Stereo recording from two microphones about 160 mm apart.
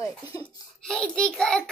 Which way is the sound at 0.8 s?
5° left (ahead or behind).